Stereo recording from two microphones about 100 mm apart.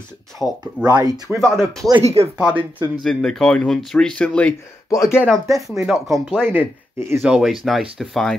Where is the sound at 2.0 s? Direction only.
80° right.